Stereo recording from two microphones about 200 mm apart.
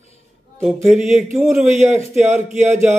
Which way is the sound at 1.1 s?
Centre (ahead or behind).